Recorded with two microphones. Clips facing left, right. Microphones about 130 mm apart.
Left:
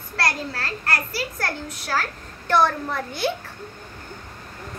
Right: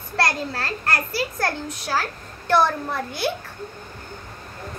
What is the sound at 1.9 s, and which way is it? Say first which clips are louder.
A child's voice: even; 10° right (ahead or behind).